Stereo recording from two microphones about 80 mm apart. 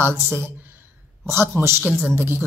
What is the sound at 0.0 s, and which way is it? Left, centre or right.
A woman's voice, right.